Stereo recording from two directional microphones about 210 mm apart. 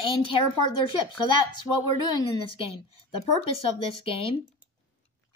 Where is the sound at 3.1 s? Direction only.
25° left (ahead or behind).